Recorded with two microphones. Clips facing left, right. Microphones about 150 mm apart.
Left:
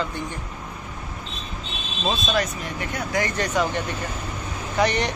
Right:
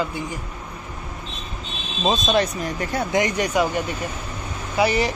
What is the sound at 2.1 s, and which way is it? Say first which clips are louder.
Speech: right 4 dB; 20° right (ahead or behind).